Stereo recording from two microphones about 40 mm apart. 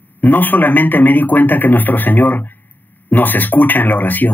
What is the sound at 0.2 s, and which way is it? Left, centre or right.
Speech, left.